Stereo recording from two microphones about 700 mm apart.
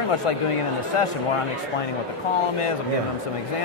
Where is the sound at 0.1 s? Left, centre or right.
Left.